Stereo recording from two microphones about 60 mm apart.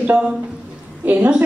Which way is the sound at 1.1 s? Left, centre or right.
Right.